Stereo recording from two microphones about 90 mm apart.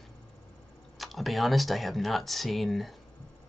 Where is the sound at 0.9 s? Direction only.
Centre (ahead or behind).